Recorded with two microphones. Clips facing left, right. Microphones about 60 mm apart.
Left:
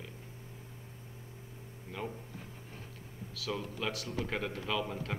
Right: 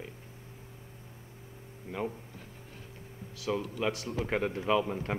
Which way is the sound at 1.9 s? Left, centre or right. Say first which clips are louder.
Right 6 dB; right.